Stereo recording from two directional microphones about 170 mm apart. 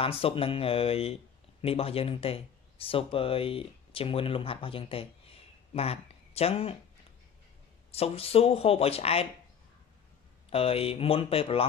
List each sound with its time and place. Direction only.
0.0 s speech: 35° left (ahead or behind)
7.9 s speech: 35° left (ahead or behind)
10.5 s speech: 35° left (ahead or behind)